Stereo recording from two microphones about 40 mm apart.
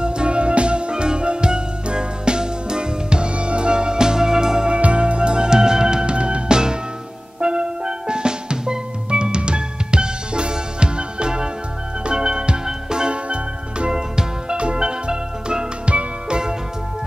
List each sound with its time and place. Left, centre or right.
0.0 s music: right